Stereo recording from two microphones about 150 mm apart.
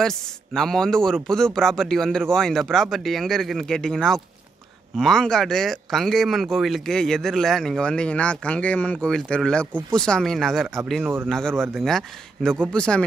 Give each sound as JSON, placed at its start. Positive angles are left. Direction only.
{"t": 0.0, "sound": "speech", "side_deg": 5}